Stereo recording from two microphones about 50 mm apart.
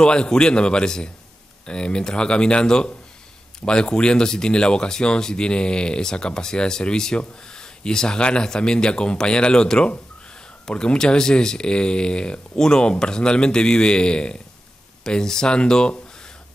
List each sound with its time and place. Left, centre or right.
0.0 s speech: centre